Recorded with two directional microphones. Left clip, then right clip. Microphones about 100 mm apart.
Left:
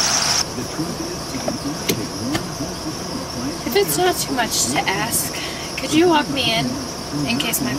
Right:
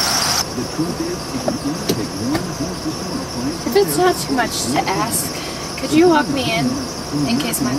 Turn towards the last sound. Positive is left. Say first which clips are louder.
# right 1 dB
turn(degrees=10)  # may be behind; listen again after turning